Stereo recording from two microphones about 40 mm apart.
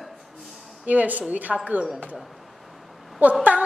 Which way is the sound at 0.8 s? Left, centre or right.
Right.